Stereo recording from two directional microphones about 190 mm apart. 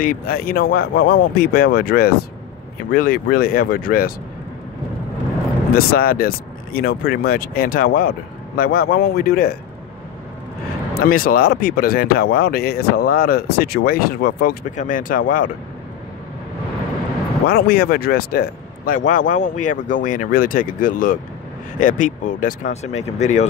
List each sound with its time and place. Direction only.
0.0 s speech: 50° left (ahead or behind)
5.8 s speech: 50° left (ahead or behind)
11.0 s speech: 50° left (ahead or behind)
17.5 s speech: 55° left (ahead or behind); by 23.4 s 40° left (ahead or behind)